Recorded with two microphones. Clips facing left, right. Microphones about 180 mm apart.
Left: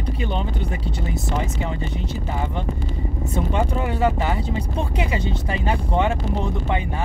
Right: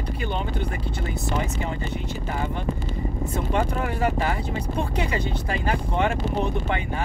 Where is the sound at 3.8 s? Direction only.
20° left (ahead or behind).